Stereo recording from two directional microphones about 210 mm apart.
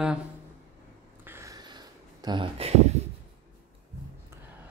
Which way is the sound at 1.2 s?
10° right (ahead or behind).